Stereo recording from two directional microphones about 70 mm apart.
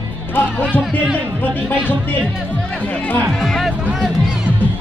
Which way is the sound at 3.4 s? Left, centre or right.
Centre.